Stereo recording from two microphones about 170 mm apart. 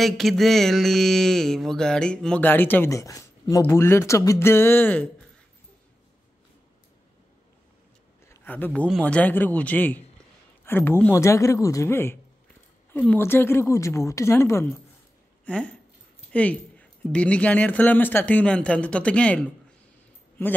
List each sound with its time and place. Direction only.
0.0 s speech: centre (ahead or behind)
8.3 s speech: 10° left (ahead or behind)